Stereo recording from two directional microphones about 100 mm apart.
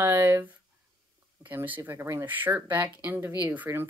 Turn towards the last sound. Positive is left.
turn(degrees=-20)  # may be behind; listen again after turning